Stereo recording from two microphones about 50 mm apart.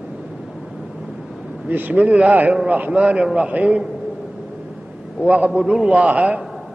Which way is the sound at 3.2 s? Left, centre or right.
Centre.